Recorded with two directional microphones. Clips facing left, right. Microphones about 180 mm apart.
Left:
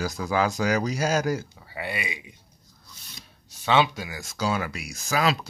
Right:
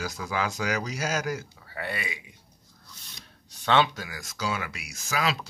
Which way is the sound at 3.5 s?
10° left (ahead or behind).